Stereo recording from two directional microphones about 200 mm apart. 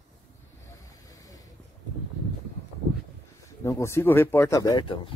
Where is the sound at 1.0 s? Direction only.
15° left (ahead or behind).